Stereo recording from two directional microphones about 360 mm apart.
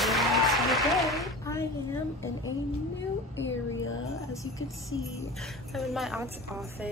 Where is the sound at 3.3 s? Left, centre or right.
Left.